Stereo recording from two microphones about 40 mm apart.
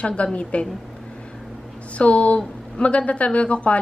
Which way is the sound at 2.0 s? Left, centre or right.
Left.